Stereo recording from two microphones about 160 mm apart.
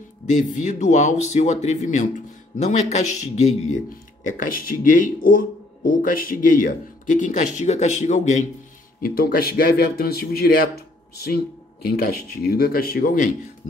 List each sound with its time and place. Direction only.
0.3 s speech: 50° left (ahead or behind)
4.3 s speech: 60° left (ahead or behind)
9.0 s speech: 65° left (ahead or behind)